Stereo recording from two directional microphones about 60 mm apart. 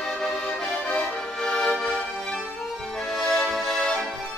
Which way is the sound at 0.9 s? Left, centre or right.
Centre.